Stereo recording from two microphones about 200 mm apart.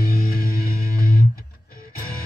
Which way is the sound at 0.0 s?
45° left (ahead or behind).